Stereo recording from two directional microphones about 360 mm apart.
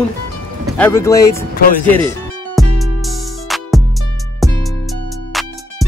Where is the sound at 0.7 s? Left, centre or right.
Centre.